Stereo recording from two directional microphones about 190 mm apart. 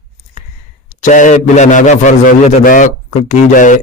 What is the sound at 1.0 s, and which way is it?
A man's voice, 40° left (ahead or behind).